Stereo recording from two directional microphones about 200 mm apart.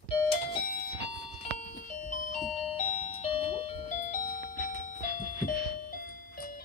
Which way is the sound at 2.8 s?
30° left (ahead or behind).